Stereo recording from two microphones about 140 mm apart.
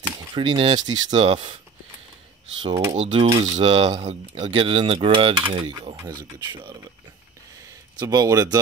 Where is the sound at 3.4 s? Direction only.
50° right (ahead or behind).